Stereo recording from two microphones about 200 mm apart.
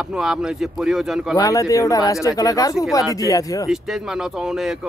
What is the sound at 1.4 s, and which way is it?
Speech, 15° left (ahead or behind).